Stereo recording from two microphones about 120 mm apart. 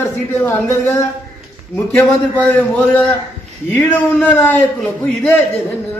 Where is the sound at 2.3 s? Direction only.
10° left (ahead or behind).